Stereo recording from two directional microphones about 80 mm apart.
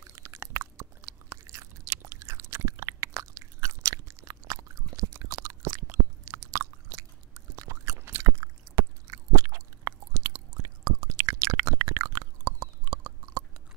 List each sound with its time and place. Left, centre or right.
0.0 s chewing: right